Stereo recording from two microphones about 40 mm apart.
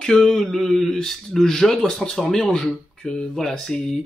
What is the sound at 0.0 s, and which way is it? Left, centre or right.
Speech, centre.